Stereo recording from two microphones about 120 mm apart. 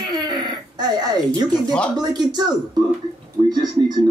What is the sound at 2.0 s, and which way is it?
A man's voice, 35° right (ahead or behind).